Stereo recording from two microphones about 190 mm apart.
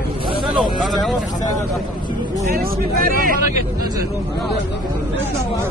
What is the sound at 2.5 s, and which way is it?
Speech, 50° right (ahead or behind).